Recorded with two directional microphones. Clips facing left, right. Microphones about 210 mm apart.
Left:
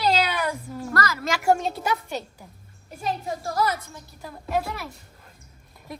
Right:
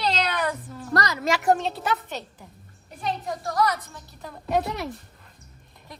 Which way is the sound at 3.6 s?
5° left (ahead or behind).